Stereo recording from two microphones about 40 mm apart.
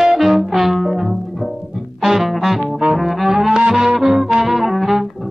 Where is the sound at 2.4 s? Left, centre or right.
Centre.